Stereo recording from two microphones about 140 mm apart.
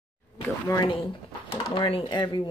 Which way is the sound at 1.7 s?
40° left (ahead or behind).